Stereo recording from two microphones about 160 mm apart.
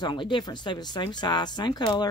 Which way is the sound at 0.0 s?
30° left (ahead or behind).